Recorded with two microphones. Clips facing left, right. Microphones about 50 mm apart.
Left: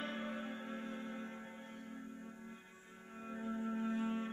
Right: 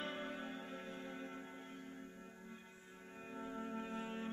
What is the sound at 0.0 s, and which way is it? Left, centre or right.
Music, centre.